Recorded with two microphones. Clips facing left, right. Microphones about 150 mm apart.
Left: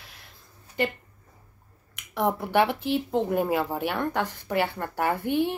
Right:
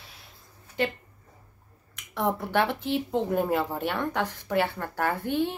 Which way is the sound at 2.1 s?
5° left (ahead or behind).